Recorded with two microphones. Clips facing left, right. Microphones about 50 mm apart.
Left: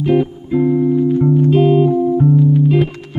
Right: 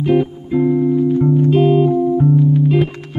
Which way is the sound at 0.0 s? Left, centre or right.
Centre.